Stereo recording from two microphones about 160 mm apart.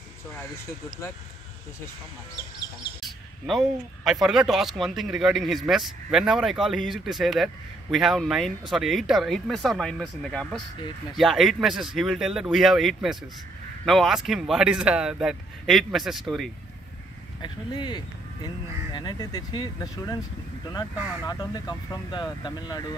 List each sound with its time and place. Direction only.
3.0 s speech: centre (ahead or behind)
17.4 s speech: 30° left (ahead or behind)
21.3 s speech: 25° left (ahead or behind)